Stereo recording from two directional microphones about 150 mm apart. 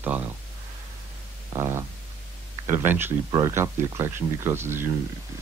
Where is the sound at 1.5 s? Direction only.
20° right (ahead or behind).